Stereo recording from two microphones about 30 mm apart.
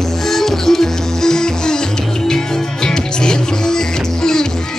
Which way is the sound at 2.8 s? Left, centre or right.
Left.